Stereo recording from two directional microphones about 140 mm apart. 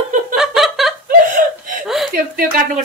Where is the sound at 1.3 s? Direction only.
75° right (ahead or behind).